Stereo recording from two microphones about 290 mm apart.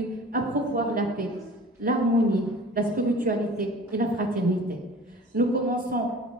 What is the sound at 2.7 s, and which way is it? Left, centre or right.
Speech, right.